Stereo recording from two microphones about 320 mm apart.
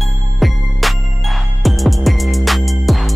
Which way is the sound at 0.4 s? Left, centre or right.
Centre.